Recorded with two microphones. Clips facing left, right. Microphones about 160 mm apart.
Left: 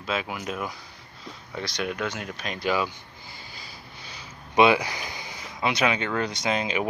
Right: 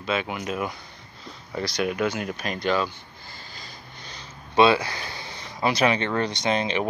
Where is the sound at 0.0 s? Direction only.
Centre (ahead or behind).